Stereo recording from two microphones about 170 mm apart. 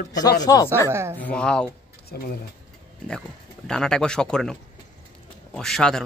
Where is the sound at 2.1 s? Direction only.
65° left (ahead or behind).